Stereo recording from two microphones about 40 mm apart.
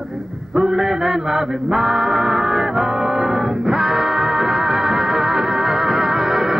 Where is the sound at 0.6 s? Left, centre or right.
Centre.